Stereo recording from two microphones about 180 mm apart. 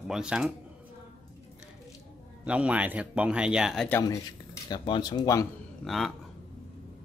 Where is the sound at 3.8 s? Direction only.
15° left (ahead or behind).